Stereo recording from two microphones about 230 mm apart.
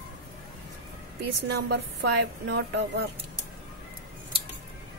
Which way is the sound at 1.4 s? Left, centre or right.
Right.